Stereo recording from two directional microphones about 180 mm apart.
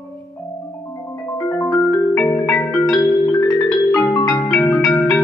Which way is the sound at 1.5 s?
5° left (ahead or behind).